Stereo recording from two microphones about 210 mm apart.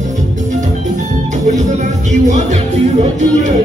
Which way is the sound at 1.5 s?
35° right (ahead or behind).